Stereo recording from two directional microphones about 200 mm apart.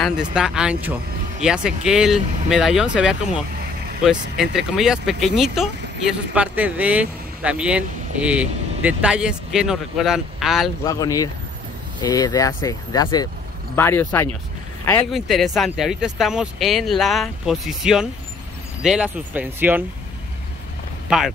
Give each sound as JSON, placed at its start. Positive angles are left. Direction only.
{"t": 0.0, "sound": "speech", "side_deg": -5}
{"t": 10.8, "sound": "speech", "side_deg": 20}
{"t": 15.1, "sound": "speech", "side_deg": 0}